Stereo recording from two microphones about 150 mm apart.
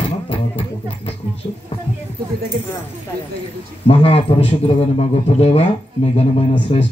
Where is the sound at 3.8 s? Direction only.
40° left (ahead or behind).